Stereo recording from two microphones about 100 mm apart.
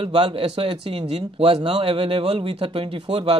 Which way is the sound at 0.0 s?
65° right (ahead or behind).